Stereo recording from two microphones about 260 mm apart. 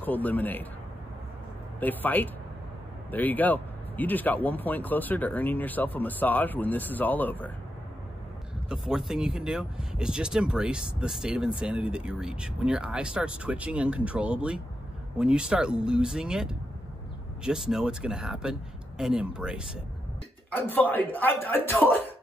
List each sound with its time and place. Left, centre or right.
0.0 s speech: centre
1.8 s speech: centre
8.8 s speech: centre
20.5 s speech: centre